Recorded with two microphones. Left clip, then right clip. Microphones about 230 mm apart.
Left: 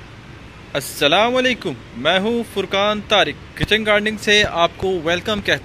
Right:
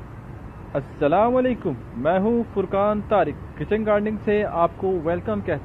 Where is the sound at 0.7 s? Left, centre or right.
Left.